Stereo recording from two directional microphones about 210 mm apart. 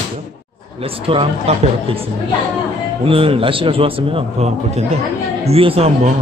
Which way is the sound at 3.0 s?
25° right (ahead or behind).